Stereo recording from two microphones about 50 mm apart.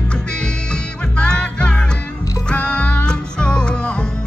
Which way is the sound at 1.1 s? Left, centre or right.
Centre.